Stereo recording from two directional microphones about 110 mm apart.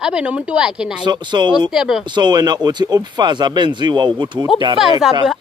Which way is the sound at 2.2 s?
40° right (ahead or behind).